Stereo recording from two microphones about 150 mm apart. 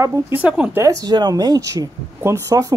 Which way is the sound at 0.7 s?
25° right (ahead or behind).